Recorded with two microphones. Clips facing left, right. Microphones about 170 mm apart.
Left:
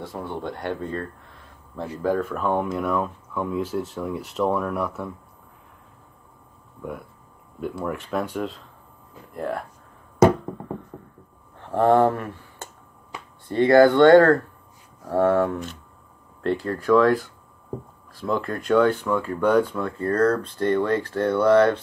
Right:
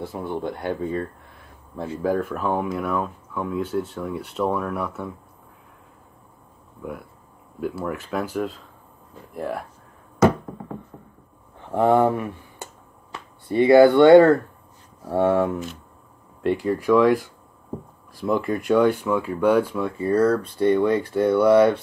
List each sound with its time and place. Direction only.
0.0 s speech: 5° right (ahead or behind)
6.8 s speech: centre (ahead or behind)
11.7 s speech: 10° right (ahead or behind)